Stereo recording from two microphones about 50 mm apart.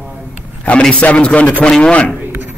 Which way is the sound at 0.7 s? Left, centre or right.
Left.